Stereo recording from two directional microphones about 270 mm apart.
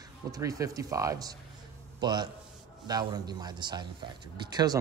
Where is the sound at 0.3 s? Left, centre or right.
Centre.